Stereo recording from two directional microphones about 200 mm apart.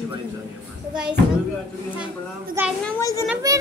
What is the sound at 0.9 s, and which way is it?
Speech, 5° right (ahead or behind).